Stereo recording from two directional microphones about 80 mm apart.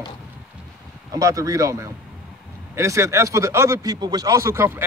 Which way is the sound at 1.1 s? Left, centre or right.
Right.